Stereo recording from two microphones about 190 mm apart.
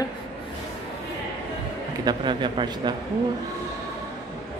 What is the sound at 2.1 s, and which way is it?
Speech, 25° right (ahead or behind).